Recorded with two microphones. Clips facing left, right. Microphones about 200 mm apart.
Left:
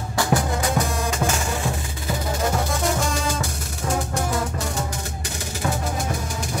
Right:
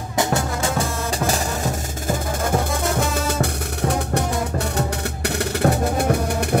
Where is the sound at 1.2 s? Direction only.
40° right (ahead or behind).